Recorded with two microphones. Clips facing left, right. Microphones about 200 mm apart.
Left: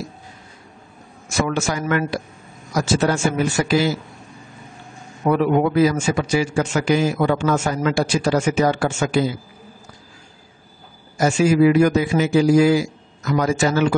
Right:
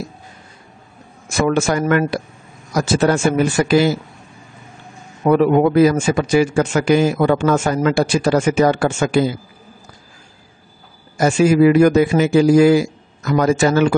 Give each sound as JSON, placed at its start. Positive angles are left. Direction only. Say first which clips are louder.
{"t": 1.5, "sound": "a man's voice", "louder": "right 8 dB", "side_deg": -55}
{"t": 5.2, "sound": "a man's voice", "louder": "right 4 dB", "side_deg": -55}
{"t": 11.1, "sound": "a man's voice", "louder": "right 3 dB", "side_deg": -55}